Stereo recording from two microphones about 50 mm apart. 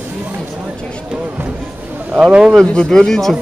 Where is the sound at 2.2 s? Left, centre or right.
Centre.